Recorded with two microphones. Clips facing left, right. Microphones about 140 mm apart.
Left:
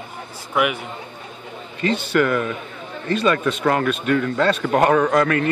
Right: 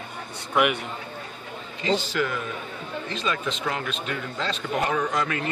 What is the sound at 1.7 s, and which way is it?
A man's voice, 60° left (ahead or behind).